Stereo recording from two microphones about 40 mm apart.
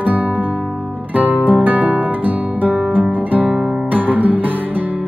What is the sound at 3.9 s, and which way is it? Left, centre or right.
Music, right.